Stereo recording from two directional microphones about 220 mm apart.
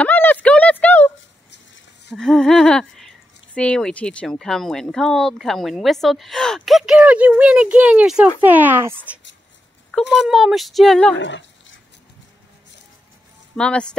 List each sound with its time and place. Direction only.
0.0 s a sound: 10° left (ahead or behind)
2.1 s speech: centre (ahead or behind)
10.2 s speech: centre (ahead or behind)
11.1 s dog: 55° left (ahead or behind)
13.6 s speech: 5° left (ahead or behind)